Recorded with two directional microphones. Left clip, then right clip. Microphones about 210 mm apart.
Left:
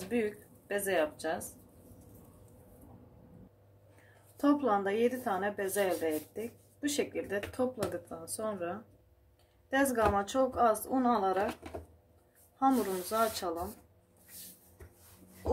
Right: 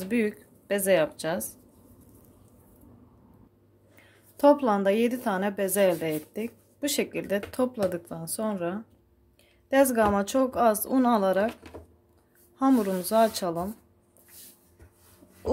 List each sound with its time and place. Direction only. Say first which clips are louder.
0.1 s speech: right 5 dB; 45° right (ahead or behind)
4.4 s a woman's voice: right 8 dB; 45° right (ahead or behind)
12.5 s a woman's voice: right 5 dB; 45° right (ahead or behind)